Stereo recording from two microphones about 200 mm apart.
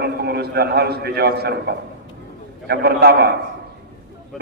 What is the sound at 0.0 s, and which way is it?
A man's voice, 55° right (ahead or behind).